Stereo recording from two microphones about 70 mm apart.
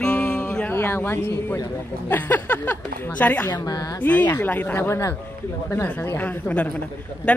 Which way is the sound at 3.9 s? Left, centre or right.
Left.